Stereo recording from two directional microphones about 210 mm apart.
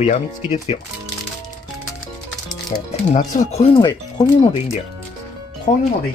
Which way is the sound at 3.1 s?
35° left (ahead or behind).